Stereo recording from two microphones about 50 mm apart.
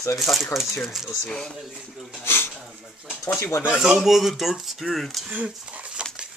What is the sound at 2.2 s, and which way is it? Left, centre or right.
Speech, left.